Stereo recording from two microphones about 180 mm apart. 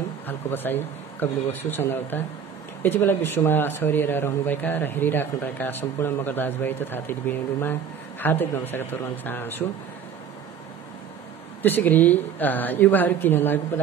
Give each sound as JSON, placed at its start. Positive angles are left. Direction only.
{"t": 0.3, "sound": "speech", "side_deg": 10}
{"t": 11.6, "sound": "speech", "side_deg": 10}